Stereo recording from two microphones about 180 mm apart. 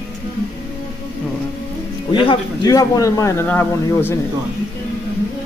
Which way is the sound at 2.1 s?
25° left (ahead or behind).